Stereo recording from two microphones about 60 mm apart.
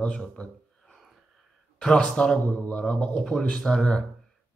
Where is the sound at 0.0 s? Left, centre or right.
Centre.